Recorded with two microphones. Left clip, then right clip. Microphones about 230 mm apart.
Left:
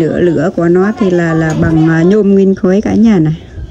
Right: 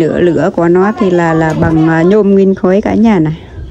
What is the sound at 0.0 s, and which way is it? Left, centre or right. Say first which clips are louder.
Speech: right 1 dB; centre.